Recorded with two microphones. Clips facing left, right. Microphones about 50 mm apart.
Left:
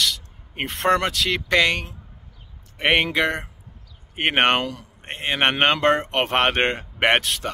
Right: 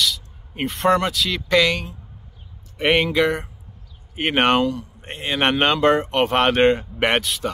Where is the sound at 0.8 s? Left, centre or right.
Left.